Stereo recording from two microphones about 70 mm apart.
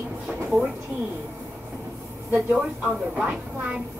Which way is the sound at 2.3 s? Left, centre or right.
Centre.